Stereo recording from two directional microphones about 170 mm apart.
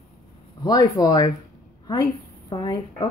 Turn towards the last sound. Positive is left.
turn(degrees=25)  # may be behind; listen again after turning